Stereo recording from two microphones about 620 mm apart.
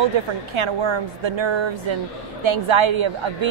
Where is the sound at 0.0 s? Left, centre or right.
Right.